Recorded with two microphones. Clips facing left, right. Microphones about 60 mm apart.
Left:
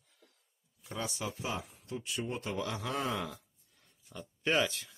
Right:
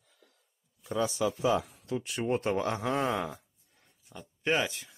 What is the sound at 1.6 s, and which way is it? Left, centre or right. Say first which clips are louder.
A man's voice: right 6 dB; right.